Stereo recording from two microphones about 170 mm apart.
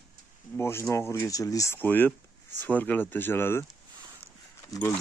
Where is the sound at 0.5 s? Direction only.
15° left (ahead or behind).